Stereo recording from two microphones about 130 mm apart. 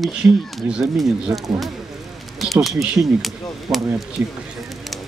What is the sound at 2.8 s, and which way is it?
Speech, 10° right (ahead or behind).